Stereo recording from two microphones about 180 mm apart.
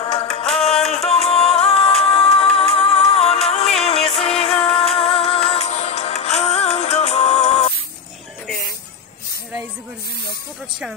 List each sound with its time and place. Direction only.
0.1 s music: 35° left (ahead or behind)